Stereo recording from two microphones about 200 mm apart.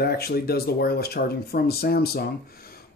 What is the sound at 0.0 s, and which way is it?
Speech, 50° left (ahead or behind).